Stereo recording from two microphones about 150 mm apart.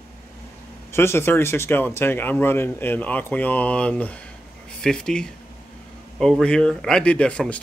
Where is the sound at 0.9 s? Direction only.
15° left (ahead or behind).